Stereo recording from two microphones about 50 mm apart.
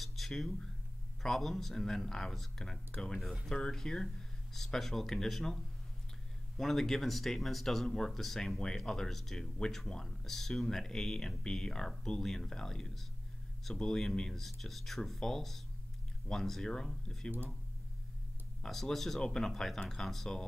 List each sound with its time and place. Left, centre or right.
0.0 s a sound: centre
0.4 s speech: centre
18.6 s speech: centre